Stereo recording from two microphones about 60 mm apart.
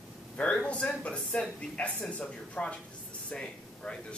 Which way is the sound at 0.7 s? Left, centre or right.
Left.